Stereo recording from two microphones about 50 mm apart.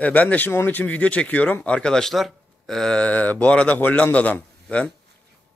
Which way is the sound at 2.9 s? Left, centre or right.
Left.